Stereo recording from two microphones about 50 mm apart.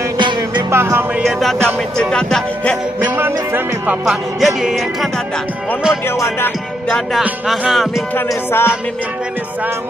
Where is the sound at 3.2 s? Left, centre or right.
Right.